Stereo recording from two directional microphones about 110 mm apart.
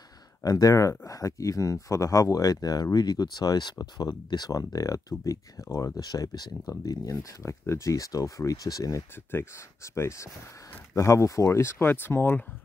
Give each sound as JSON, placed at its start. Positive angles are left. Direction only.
{"t": 0.4, "sound": "speech", "side_deg": 35}
{"t": 9.1, "sound": "speech", "side_deg": 20}